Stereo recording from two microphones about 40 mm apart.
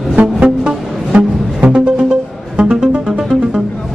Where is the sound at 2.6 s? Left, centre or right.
Centre.